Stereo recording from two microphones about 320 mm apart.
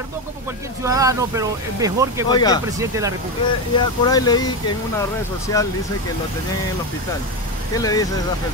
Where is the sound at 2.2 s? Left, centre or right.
Centre.